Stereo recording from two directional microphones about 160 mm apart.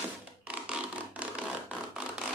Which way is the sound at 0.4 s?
10° right (ahead or behind).